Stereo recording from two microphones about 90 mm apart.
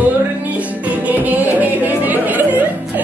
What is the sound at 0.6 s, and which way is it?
Music, 15° right (ahead or behind).